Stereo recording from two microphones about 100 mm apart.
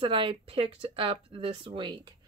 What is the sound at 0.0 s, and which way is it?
Speech, 60° right (ahead or behind).